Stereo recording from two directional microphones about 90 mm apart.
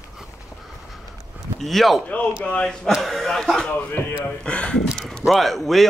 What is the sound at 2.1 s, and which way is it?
A man's voice, 15° left (ahead or behind).